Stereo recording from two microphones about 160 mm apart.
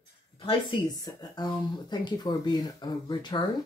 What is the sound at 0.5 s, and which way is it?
Speech, 30° left (ahead or behind).